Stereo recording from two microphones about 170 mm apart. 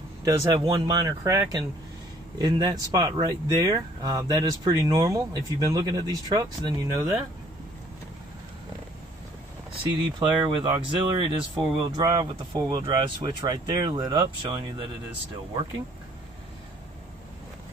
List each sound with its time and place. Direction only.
0.2 s speech: 25° right (ahead or behind)
9.7 s speech: 30° right (ahead or behind)